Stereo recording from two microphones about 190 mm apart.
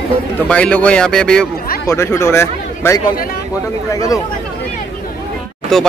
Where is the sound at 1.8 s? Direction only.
15° left (ahead or behind).